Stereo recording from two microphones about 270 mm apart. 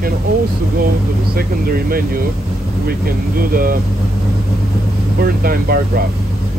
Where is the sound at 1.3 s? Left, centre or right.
Right.